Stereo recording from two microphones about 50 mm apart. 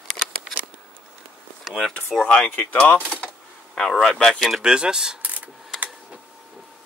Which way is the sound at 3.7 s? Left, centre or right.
Centre.